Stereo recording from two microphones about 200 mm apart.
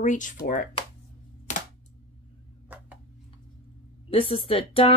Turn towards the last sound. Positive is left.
turn(degrees=30)  # may be behind; listen again after turning